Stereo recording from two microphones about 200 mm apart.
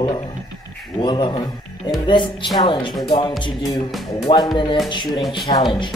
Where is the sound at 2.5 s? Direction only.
20° left (ahead or behind).